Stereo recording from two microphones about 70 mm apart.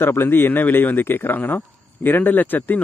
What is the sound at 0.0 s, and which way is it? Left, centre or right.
Speech, left.